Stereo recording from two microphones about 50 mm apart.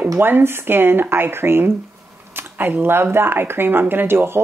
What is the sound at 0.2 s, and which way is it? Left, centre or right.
Speech, right.